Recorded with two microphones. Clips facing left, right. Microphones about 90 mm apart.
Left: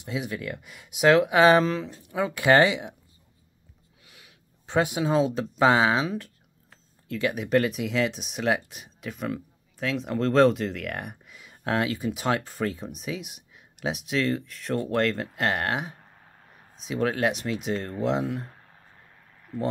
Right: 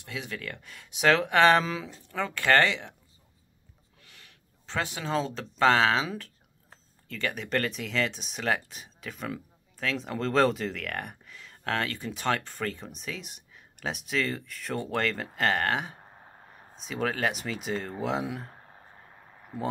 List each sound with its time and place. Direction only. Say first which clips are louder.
0.0 s speech: left 6 dB; 20° left (ahead or behind); by 2.0 s centre (ahead or behind)
2.0 s speech: left 4 dB; 10° left (ahead or behind)
4.0 s speech: left 1 dB; 10° left (ahead or behind)
16.0 s a sound: right 3 dB; 25° right (ahead or behind)
16.8 s speech: left 4 dB; centre (ahead or behind)
18.5 s frog: right 2 dB; 25° right (ahead or behind)